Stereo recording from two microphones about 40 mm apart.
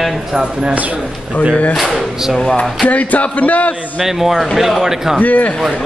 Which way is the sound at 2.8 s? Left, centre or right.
Left.